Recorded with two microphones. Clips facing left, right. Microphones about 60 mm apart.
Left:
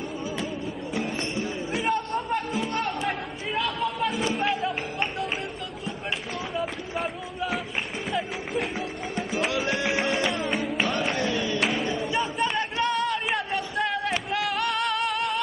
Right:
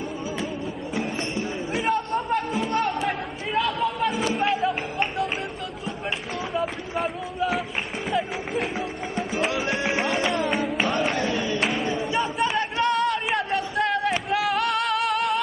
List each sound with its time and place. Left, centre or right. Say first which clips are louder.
1.8 s chatter: right 3 dB; centre
4.3 s music: right 3 dB; centre
6.5 s a sound: right 3 dB; centre
8.1 s music: right 4 dB; centre
9.7 s music: right 1 dB; right
10.5 s music: right 2 dB; centre
11.1 s a sound: right 1 dB; right
11.6 s singing: right 1 dB; centre
12.0 s chatter: right 2 dB; centre
14.3 s music: right 4 dB; centre